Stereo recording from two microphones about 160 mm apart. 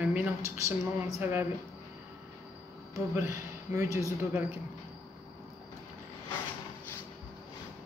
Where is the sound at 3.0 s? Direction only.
20° right (ahead or behind).